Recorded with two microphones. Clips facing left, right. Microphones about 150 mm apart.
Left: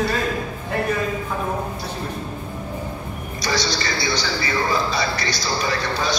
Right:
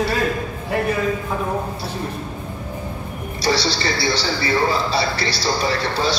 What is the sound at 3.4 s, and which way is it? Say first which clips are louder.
A man's voice: right 4 dB; 30° right (ahead or behind).